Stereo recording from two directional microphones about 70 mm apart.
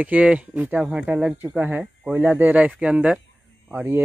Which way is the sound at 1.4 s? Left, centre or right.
Right.